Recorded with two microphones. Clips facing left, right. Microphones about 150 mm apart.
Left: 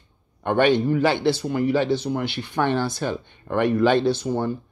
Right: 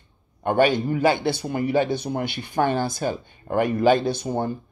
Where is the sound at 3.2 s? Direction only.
10° right (ahead or behind).